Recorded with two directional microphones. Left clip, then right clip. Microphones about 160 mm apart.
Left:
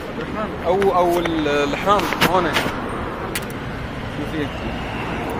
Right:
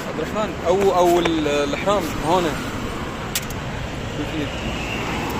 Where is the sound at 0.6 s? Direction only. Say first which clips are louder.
Even; 10° right (ahead or behind).